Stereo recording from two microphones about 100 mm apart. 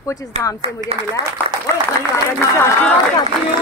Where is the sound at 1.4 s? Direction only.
20° left (ahead or behind).